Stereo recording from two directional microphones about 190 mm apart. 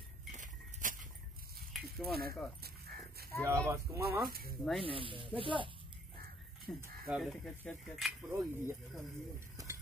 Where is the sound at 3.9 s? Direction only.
15° right (ahead or behind).